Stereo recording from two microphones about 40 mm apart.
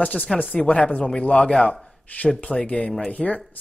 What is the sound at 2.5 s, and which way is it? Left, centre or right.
Speech, left.